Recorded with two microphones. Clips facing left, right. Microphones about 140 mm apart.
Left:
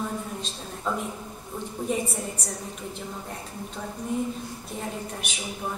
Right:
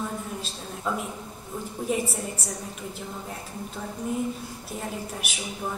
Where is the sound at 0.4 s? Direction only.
5° right (ahead or behind).